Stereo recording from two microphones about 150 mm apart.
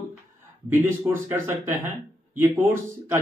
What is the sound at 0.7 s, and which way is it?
Speech, 15° right (ahead or behind).